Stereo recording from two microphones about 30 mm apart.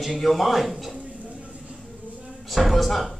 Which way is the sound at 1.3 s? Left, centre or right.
Right.